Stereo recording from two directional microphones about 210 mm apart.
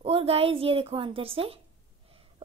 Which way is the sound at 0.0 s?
25° right (ahead or behind).